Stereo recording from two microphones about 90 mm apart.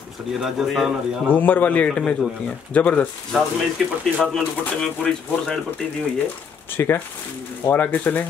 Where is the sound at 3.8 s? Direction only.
Centre (ahead or behind).